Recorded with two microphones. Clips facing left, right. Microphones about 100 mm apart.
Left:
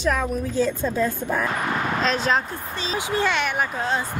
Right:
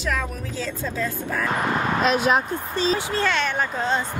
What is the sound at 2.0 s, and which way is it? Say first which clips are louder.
Speech: right 3 dB; 10° right (ahead or behind).